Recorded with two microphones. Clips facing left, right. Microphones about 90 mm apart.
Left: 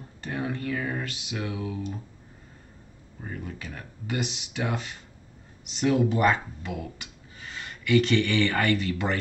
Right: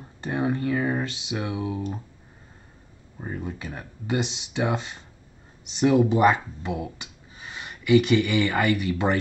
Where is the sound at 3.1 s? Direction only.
20° right (ahead or behind).